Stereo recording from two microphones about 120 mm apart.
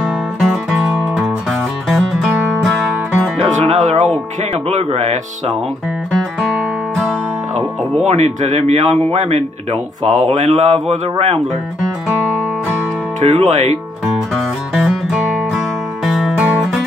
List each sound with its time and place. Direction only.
0.0 s music: centre (ahead or behind)
3.3 s music: 70° right (ahead or behind)
4.6 s speech: 60° right (ahead or behind)
7.5 s speech: 70° right (ahead or behind)
13.2 s speech: 65° right (ahead or behind)
14.7 s music: 5° right (ahead or behind)